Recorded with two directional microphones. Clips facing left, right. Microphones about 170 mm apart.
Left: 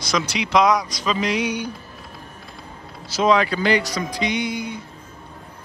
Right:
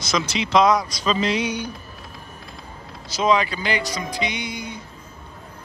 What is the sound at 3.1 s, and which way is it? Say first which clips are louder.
Music: left 2 dB; centre (ahead or behind).